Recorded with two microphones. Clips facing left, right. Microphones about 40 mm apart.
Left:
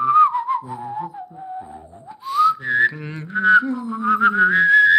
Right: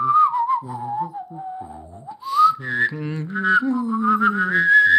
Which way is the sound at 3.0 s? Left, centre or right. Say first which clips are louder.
Left 2 dB; centre.